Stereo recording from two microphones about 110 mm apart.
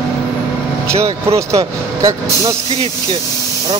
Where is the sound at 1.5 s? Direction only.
30° right (ahead or behind).